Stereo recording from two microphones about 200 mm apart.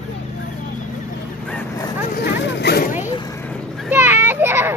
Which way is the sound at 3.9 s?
10° right (ahead or behind).